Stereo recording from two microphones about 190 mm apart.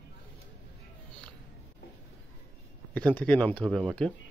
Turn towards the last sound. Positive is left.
turn(degrees=5)  # may be behind; listen again after turning